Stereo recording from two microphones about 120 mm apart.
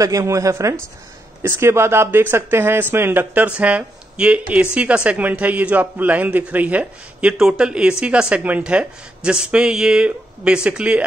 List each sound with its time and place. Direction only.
0.0 s a man's voice: 25° right (ahead or behind); by 11.1 s 10° right (ahead or behind)